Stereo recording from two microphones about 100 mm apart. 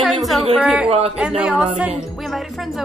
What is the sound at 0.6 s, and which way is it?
Speech, 15° right (ahead or behind).